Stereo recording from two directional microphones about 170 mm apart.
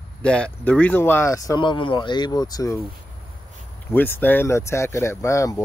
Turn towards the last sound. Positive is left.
turn(degrees=20)  # may be behind; listen again after turning